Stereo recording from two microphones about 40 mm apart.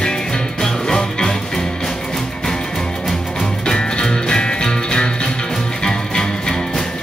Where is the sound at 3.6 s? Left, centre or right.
Left.